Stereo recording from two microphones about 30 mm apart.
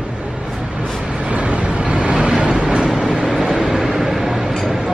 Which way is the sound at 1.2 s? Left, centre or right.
Right.